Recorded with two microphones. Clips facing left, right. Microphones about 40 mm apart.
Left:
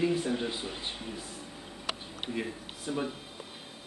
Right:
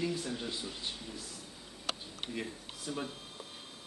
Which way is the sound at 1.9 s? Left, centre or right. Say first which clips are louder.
Left 3 dB; centre.